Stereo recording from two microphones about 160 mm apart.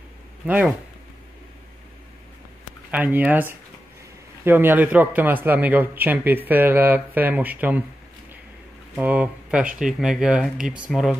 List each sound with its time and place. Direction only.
0.5 s a man's voice: 10° right (ahead or behind)
2.9 s a man's voice: 10° right (ahead or behind)
8.9 s speech: 10° right (ahead or behind)